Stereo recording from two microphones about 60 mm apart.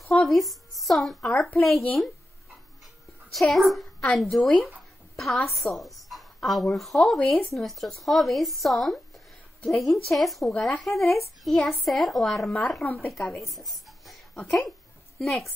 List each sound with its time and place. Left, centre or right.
0.1 s a woman's voice: centre
3.3 s a woman's voice: centre
12.4 s speech: centre
12.8 s speech: left
13.4 s writing: centre
15.1 s a woman's voice: centre